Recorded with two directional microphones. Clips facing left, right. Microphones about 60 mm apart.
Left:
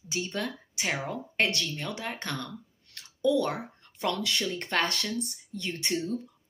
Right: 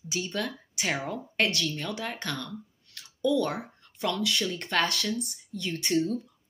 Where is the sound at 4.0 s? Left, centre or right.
Left.